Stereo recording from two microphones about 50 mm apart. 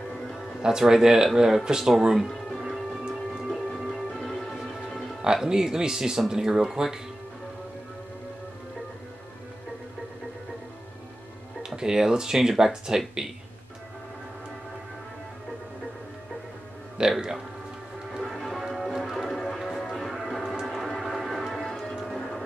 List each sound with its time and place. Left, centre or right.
0.6 s speech: centre
2.6 s music: centre
5.2 s speech: centre
11.6 s speech: centre
17.0 s music: centre
18.1 s music: centre
20.6 s a sound: centre